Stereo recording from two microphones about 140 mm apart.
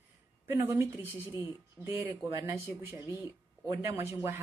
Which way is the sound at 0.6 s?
20° right (ahead or behind).